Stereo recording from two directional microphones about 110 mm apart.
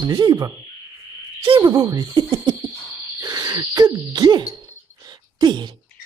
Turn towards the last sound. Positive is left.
turn(degrees=-45)  # may be behind; listen again after turning